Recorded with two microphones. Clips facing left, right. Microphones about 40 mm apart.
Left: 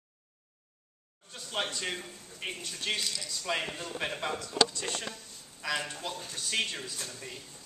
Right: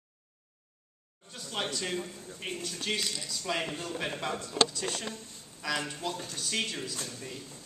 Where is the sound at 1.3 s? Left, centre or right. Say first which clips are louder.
Even; centre.